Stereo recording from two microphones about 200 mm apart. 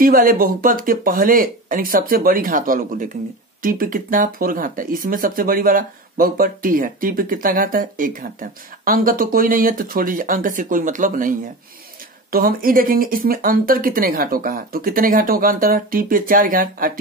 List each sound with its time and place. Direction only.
0.0 s speech: 45° right (ahead or behind)